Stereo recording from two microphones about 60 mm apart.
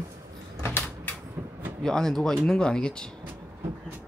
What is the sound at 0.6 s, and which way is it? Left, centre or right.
Door, left.